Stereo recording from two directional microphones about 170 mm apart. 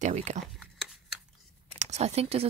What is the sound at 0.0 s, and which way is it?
Speech, 45° right (ahead or behind).